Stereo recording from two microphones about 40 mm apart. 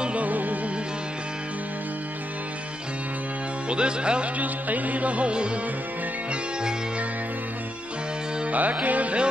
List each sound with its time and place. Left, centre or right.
0.0 s music: right
3.6 s speech: right
4.4 s music: right
8.5 s music: right